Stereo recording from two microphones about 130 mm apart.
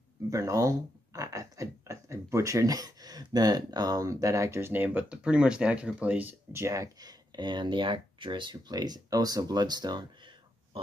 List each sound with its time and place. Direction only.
0.3 s speech: 25° right (ahead or behind)